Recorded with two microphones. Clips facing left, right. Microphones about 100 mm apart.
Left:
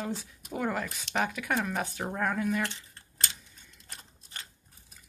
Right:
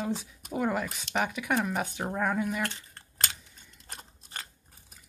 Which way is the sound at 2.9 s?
50° right (ahead or behind).